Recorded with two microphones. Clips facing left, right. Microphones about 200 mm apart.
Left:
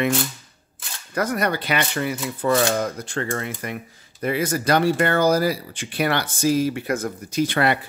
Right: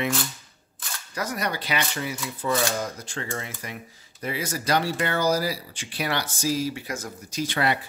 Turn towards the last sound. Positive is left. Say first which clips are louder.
# left 5 dB
turn(degrees=60)  # may be behind; listen again after turning